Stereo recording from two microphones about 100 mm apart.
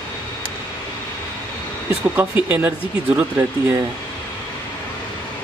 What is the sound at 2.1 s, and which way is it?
Speech, 15° right (ahead or behind).